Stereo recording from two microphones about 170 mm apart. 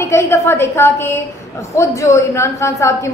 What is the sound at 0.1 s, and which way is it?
A woman's voice, 15° left (ahead or behind).